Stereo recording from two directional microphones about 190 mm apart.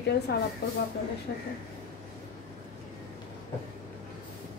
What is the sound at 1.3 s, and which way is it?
Speech, 65° left (ahead or behind).